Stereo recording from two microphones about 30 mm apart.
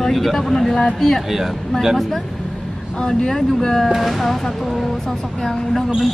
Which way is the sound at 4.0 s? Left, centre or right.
Centre.